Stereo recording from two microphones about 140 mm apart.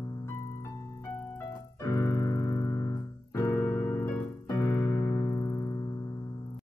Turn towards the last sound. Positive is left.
turn(degrees=25)  # may be behind; listen again after turning